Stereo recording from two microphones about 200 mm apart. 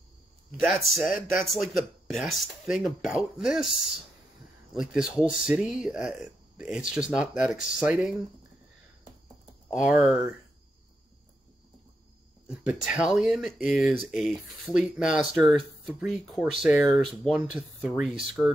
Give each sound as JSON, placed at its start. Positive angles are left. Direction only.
{"t": 0.7, "sound": "speech", "side_deg": 0}
{"t": 4.7, "sound": "speech", "side_deg": -5}
{"t": 9.7, "sound": "speech", "side_deg": 0}
{"t": 12.4, "sound": "speech", "side_deg": -5}